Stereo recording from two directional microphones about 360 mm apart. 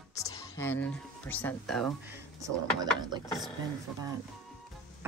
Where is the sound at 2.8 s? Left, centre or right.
Centre.